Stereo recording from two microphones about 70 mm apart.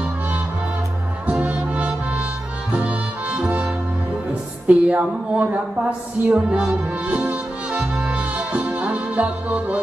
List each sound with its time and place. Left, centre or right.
1.2 s brass instrument: right
2.7 s music: centre
4.6 s a sound: centre